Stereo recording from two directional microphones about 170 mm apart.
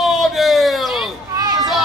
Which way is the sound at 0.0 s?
Centre (ahead or behind).